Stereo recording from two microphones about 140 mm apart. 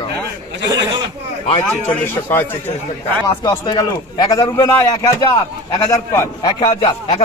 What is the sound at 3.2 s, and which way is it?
A man's voice, 30° left (ahead or behind).